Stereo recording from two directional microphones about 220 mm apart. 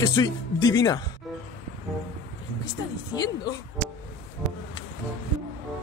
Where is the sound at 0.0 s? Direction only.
20° left (ahead or behind).